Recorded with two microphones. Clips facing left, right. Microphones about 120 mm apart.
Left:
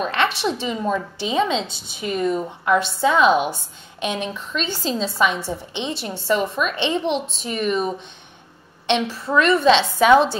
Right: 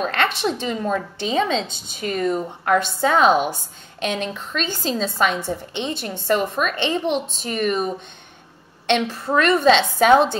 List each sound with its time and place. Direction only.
0.0 s a woman's voice: 50° right (ahead or behind)
4.0 s a woman's voice: 55° right (ahead or behind)
8.8 s a woman's voice: 50° right (ahead or behind)